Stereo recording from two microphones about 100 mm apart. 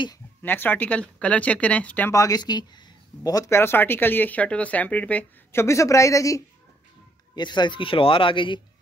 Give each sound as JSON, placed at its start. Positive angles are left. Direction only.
{"t": 0.4, "sound": "speech", "side_deg": 20}
{"t": 2.1, "sound": "speech", "side_deg": 40}
{"t": 3.3, "sound": "speech", "side_deg": 30}
{"t": 5.5, "sound": "speech", "side_deg": 25}
{"t": 7.3, "sound": "speech", "side_deg": 50}